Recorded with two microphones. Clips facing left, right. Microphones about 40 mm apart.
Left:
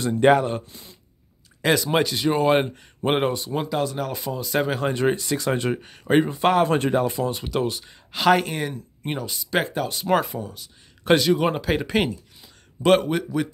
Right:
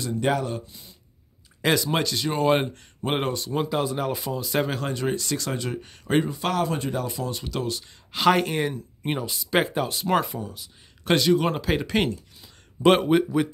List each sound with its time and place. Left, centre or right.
0.0 s speech: left
1.6 s speech: centre
1.9 s speech: centre
3.7 s speech: centre
5.1 s speech: centre
5.5 s speech: left
5.8 s speech: centre
6.2 s speech: left
6.7 s speech: left
7.2 s speech: centre
8.1 s speech: centre